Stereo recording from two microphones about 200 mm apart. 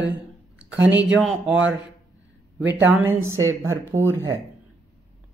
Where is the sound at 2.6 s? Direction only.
10° right (ahead or behind).